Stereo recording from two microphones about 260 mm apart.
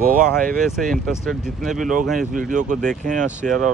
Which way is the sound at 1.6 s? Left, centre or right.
Centre.